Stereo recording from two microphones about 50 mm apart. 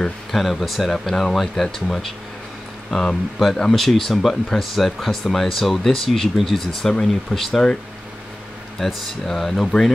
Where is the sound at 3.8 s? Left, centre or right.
Centre.